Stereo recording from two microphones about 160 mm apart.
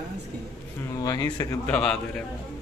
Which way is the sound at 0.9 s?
25° left (ahead or behind).